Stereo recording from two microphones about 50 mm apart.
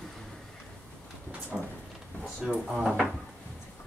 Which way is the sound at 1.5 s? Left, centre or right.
Right.